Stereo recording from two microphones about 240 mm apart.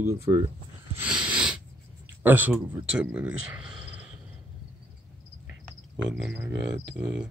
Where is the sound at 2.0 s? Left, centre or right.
Centre.